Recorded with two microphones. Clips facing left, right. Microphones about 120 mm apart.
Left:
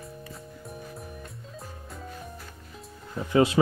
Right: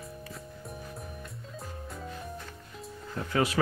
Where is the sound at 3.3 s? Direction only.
25° left (ahead or behind).